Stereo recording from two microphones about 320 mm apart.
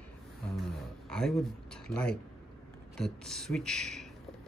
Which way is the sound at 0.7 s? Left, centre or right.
Centre.